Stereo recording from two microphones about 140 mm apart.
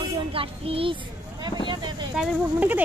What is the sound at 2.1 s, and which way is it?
Speech, 10° right (ahead or behind).